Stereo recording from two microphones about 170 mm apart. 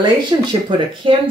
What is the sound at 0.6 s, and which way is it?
Speech, 30° right (ahead or behind).